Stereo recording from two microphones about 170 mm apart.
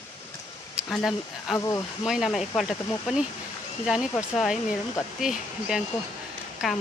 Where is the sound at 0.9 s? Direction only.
5° left (ahead or behind).